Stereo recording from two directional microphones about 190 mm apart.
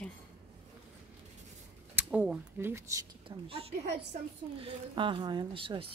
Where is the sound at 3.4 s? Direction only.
30° right (ahead or behind).